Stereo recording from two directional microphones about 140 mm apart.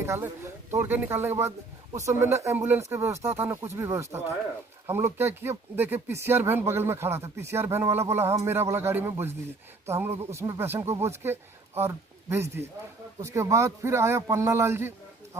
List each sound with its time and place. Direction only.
0.0 s speech: 20° right (ahead or behind)